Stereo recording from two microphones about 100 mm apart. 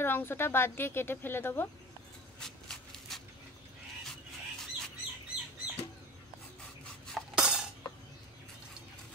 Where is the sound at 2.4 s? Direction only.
5° left (ahead or behind).